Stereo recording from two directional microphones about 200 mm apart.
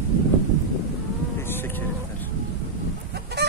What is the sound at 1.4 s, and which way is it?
Insect, 10° left (ahead or behind).